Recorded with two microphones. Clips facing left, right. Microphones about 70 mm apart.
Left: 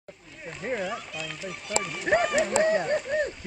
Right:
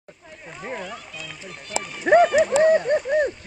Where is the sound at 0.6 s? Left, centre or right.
Centre.